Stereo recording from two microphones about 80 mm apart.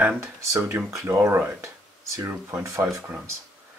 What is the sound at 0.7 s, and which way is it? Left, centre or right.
Speech, right.